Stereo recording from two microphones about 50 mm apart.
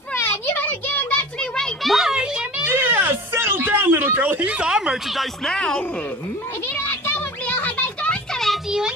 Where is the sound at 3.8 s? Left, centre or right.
Right.